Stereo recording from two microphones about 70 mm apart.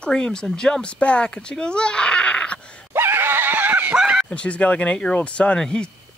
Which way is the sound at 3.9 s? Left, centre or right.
Centre.